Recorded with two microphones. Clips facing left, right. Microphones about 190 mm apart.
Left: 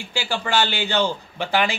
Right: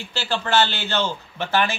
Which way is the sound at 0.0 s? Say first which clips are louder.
Even; 10° left (ahead or behind).